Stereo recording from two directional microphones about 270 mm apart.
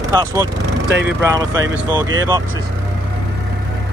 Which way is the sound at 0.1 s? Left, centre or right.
Centre.